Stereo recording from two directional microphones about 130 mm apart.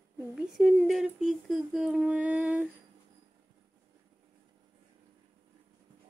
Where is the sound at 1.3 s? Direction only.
Centre (ahead or behind).